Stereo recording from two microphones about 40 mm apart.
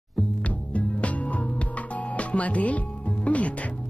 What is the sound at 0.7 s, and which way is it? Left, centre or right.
Music, left.